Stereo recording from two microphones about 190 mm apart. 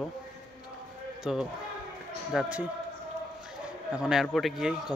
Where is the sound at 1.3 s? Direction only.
5° right (ahead or behind).